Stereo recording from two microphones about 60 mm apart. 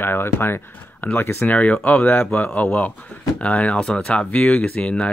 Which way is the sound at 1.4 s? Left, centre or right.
Left.